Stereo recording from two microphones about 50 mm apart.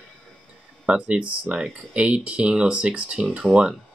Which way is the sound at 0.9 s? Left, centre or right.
Right.